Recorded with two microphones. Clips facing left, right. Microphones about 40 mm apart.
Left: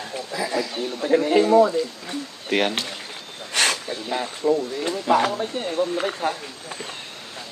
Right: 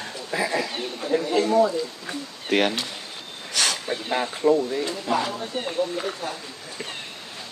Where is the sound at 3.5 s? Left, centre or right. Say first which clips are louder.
Left 3 dB; left.